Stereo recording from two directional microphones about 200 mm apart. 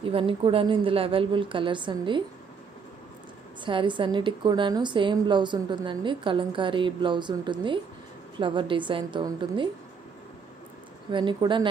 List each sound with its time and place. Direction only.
0.0 s a woman's voice: 25° right (ahead or behind)
3.6 s a woman's voice: 25° right (ahead or behind)
11.1 s a woman's voice: 25° right (ahead or behind)